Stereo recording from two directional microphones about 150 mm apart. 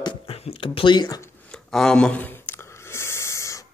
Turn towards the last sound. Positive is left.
turn(degrees=20)  # may be behind; listen again after turning